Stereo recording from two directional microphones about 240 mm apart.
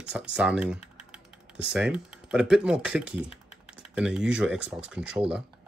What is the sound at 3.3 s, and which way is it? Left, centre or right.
Typing, left.